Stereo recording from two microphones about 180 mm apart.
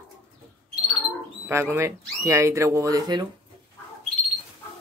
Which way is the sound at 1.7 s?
15° right (ahead or behind).